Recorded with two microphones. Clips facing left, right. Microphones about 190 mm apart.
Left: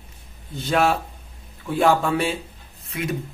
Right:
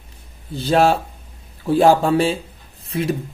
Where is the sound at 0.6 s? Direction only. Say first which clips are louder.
Right 5 dB; 30° right (ahead or behind).